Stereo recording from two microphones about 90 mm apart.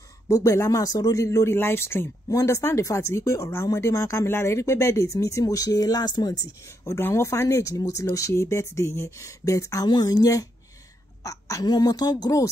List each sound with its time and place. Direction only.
0.3 s speech: 35° left (ahead or behind)
2.2 s speech: 35° left (ahead or behind)
6.8 s speech: 25° left (ahead or behind)
9.8 s speech: 50° left (ahead or behind)